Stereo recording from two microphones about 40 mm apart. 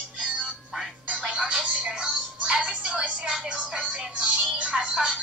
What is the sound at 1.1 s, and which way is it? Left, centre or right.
Music, right.